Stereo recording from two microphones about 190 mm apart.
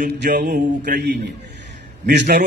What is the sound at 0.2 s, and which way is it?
A man's voice, 50° right (ahead or behind).